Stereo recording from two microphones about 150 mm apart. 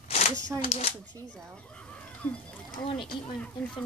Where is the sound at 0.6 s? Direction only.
45° left (ahead or behind).